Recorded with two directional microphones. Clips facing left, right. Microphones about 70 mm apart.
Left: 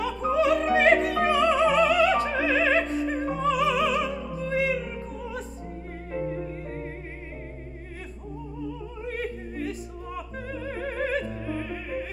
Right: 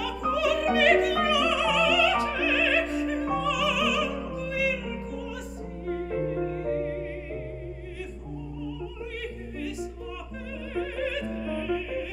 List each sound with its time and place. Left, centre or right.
0.0 s music: left
9.0 s opera: left